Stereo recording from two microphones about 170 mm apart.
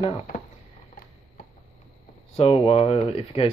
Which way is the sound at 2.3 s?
35° left (ahead or behind).